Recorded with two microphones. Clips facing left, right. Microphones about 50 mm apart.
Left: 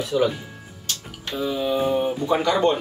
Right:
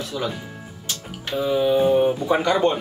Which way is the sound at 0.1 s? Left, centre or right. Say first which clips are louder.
Left 7 dB; centre.